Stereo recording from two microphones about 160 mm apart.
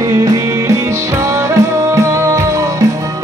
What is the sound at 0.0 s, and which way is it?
Music, 25° right (ahead or behind).